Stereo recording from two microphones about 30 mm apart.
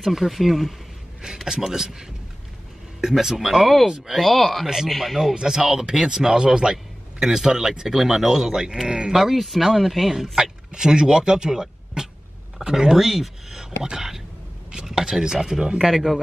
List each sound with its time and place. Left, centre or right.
0.0 s speech: centre
1.2 s speech: right; by 5.2 s centre
5.3 s a man's voice: right
9.1 s speech: centre
10.4 s speech: right
12.0 s cat: right
12.6 s speech: right
12.9 s speech: centre